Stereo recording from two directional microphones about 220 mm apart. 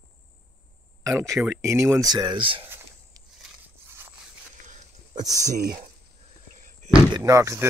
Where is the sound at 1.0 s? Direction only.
15° right (ahead or behind).